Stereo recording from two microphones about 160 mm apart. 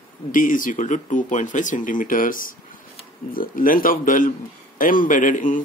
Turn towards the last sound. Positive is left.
turn(degrees=55)  # may be behind; listen again after turning